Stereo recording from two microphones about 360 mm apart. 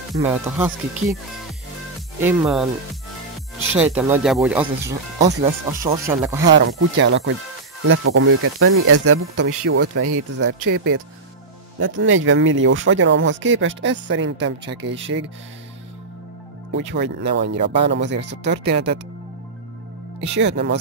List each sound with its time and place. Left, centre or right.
0.3 s speech: centre
2.1 s speech: centre
3.7 s speech: centre
6.5 s speech: right
16.7 s speech: right
20.2 s speech: right